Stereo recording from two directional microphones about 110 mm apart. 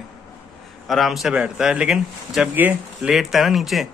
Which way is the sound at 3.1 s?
Centre (ahead or behind).